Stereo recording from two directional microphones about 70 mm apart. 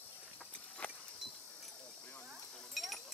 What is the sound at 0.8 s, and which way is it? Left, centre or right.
Vehicle, centre.